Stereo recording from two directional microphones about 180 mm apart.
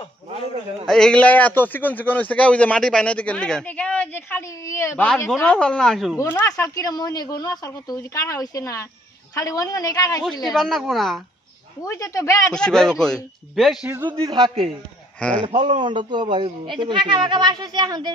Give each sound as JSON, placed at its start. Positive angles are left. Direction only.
{"t": 0.8, "sound": "a man's voice", "side_deg": 5}
{"t": 6.1, "sound": "speech", "side_deg": 15}
{"t": 10.5, "sound": "speech", "side_deg": 0}
{"t": 11.8, "sound": "speech", "side_deg": 20}
{"t": 12.5, "sound": "speech", "side_deg": 5}
{"t": 14.0, "sound": "speech", "side_deg": -25}
{"t": 15.5, "sound": "speech", "side_deg": -40}
{"t": 15.8, "sound": "speech", "side_deg": -25}